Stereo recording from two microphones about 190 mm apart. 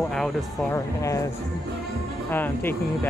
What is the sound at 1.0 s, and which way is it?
Speech, 15° left (ahead or behind).